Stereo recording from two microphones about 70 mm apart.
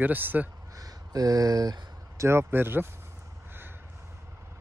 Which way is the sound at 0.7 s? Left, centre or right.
Right.